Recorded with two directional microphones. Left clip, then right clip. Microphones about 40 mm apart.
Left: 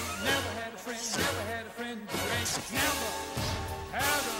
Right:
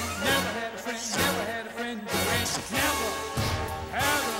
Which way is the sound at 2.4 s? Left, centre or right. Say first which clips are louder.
Right 3 dB; left.